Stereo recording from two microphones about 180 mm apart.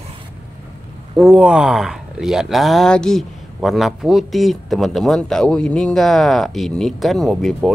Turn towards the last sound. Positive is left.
turn(degrees=0)  # may be behind; listen again after turning